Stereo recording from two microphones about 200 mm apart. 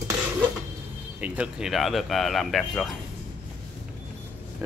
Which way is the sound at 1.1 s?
5° right (ahead or behind).